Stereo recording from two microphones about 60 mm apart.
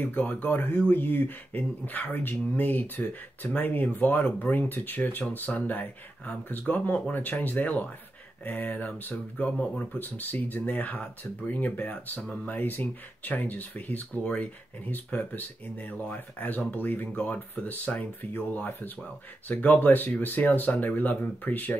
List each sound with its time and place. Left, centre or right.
0.0 s speech: left